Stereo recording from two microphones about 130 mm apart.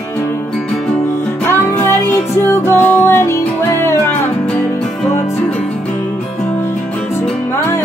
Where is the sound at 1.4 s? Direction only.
20° left (ahead or behind).